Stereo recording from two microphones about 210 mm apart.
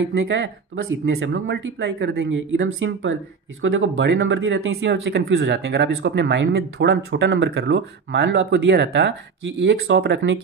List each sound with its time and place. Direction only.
0.1 s speech: 50° right (ahead or behind)